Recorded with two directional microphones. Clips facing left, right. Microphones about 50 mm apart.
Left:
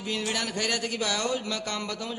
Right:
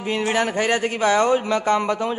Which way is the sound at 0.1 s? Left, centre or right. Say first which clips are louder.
Right 9 dB; right.